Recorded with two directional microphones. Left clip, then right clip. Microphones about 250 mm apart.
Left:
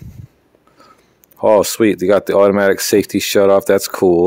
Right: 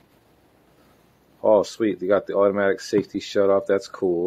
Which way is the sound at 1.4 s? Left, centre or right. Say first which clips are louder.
Left 7 dB; left.